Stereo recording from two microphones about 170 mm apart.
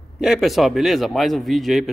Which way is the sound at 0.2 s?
Centre (ahead or behind).